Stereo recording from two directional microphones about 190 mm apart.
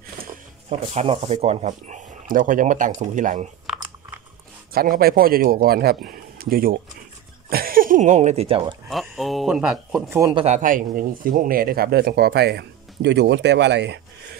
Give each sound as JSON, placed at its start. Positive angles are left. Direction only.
{"t": 0.7, "sound": "speech", "side_deg": -35}
{"t": 4.7, "sound": "speech", "side_deg": -50}
{"t": 8.8, "sound": "speech", "side_deg": 0}
{"t": 10.3, "sound": "speech", "side_deg": -35}